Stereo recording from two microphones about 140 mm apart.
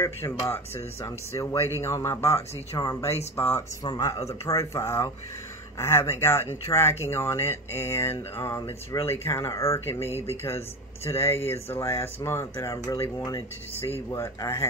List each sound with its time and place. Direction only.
0.0 s speech: 20° left (ahead or behind)